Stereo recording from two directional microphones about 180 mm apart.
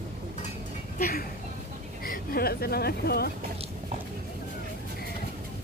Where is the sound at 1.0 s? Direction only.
55° left (ahead or behind).